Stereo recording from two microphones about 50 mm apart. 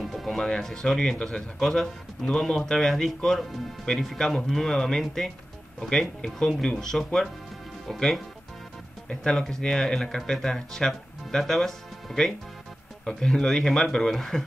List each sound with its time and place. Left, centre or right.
0.0 s speech: centre